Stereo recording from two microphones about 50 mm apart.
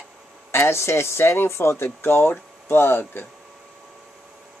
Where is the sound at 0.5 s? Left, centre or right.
Left.